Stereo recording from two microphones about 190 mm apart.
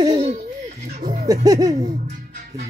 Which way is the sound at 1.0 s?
60° right (ahead or behind).